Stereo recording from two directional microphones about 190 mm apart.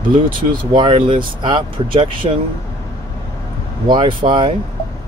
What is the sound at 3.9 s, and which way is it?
Speech, 25° right (ahead or behind).